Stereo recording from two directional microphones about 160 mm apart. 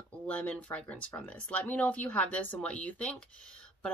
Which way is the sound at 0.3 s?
10° left (ahead or behind).